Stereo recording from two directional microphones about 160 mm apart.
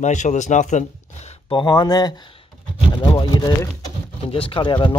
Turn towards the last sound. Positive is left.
turn(degrees=30)  # may be behind; listen again after turning